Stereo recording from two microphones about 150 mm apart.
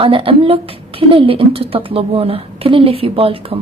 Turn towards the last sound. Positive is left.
turn(degrees=-40)  # may be behind; listen again after turning